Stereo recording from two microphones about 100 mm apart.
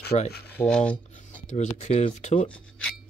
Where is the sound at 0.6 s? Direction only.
10° left (ahead or behind).